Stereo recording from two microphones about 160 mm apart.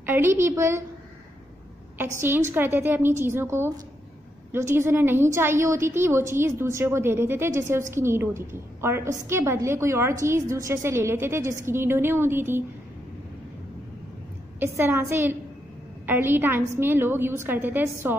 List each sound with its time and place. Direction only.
0.0 s a woman's voice: 15° right (ahead or behind)
2.0 s a woman's voice: 15° right (ahead or behind)
14.6 s a woman's voice: 15° right (ahead or behind)